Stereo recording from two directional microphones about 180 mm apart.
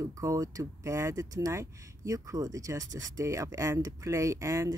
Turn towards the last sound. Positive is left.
turn(degrees=-15)  # may be behind; listen again after turning